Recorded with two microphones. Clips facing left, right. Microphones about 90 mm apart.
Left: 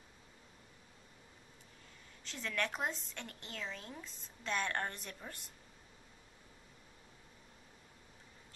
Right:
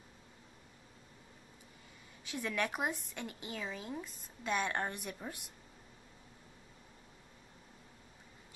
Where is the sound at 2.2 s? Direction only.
10° right (ahead or behind).